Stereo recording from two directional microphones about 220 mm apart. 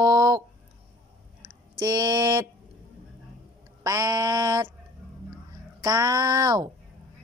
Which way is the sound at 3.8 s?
15° right (ahead or behind).